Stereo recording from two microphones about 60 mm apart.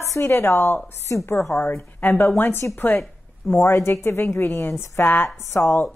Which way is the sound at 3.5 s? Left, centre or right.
Left.